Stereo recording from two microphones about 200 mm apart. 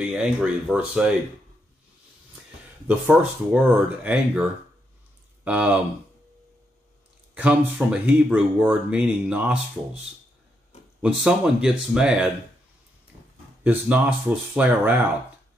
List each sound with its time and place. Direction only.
0.0 s speech: 5° right (ahead or behind)
2.9 s speech: 10° right (ahead or behind)
5.4 s speech: 5° right (ahead or behind)
7.3 s speech: 5° right (ahead or behind)
11.0 s speech: 5° right (ahead or behind)
13.1 s a sound: 15° right (ahead or behind)
13.7 s speech: 10° right (ahead or behind)